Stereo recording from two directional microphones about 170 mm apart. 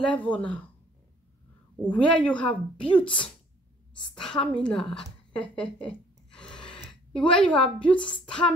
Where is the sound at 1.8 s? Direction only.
10° left (ahead or behind).